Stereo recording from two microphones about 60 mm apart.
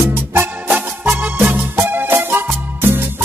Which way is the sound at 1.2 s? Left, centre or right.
Right.